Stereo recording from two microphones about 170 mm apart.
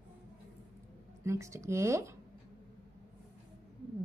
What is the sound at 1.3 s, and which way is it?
Speech, 15° right (ahead or behind).